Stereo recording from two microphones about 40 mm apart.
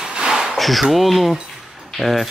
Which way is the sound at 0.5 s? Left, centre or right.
Centre.